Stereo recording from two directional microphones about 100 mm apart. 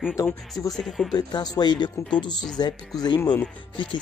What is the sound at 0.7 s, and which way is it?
Speech, centre (ahead or behind).